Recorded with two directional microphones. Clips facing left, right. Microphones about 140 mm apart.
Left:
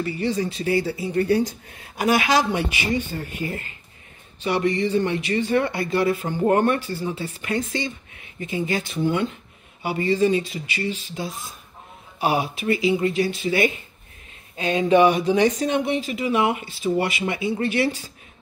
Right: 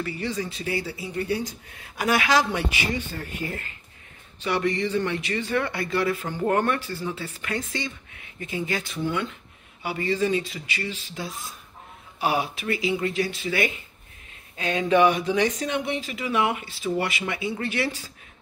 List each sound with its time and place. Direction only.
0.0 s speech: 30° left (ahead or behind); by 1.4 s 50° left (ahead or behind)
2.0 s speech: 25° left (ahead or behind)